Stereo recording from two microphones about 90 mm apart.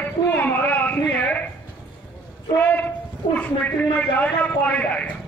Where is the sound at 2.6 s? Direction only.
20° left (ahead or behind).